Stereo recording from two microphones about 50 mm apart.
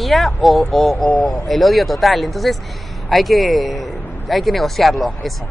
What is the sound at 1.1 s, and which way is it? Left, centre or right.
Speech, centre.